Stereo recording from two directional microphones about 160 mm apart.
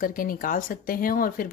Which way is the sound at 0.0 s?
60° left (ahead or behind).